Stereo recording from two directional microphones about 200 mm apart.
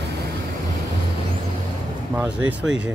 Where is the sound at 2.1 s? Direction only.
5° right (ahead or behind).